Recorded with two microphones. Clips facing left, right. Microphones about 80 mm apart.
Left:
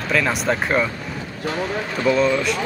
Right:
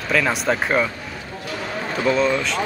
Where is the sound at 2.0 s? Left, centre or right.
Centre.